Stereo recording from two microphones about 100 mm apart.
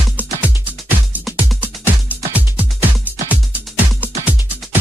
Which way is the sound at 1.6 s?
15° right (ahead or behind).